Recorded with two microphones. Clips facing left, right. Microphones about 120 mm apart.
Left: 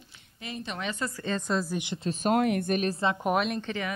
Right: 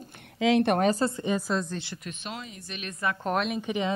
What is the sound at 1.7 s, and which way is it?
Speech, 15° left (ahead or behind).